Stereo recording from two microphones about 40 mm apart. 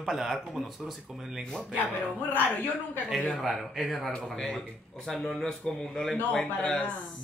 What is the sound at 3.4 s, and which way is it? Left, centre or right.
A man's voice, centre.